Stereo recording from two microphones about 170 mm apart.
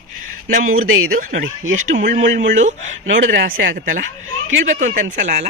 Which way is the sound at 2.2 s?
90° right.